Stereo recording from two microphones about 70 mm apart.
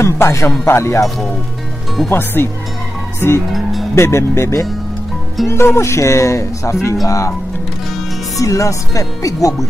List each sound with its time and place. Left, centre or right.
0.0 s speech: left
2.0 s speech: left
3.9 s speech: left
8.4 s speech: left